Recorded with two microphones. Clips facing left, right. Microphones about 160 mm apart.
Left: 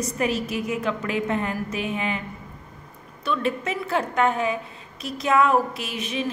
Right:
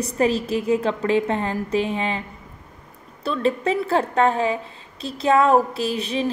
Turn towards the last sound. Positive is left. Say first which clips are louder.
# right 5 dB
turn(degrees=-35)  # may be behind; listen again after turning